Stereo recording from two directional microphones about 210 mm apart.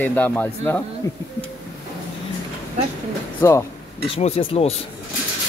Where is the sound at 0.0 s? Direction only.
10° left (ahead or behind).